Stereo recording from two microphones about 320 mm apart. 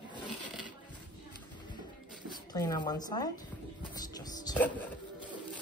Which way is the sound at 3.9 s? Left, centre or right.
Centre.